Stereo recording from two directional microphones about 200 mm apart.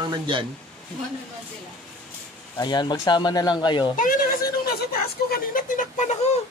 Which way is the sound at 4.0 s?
45° left (ahead or behind).